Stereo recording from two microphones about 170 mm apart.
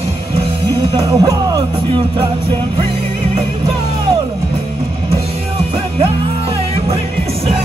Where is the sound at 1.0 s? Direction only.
20° right (ahead or behind).